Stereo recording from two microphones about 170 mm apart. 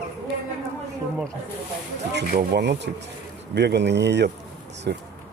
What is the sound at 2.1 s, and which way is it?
Speech, 80° right.